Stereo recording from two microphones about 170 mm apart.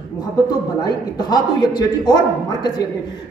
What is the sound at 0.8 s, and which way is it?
A man's voice, 25° left (ahead or behind).